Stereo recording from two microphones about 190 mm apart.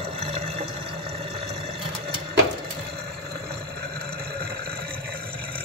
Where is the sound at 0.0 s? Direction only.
30° right (ahead or behind).